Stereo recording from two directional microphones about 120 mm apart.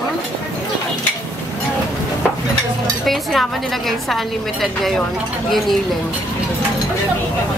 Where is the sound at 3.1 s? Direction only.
Centre (ahead or behind).